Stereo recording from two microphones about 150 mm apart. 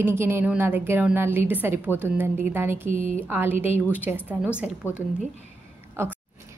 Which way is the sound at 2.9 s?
55° right (ahead or behind).